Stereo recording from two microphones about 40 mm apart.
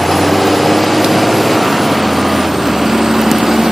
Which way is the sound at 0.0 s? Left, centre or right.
Centre.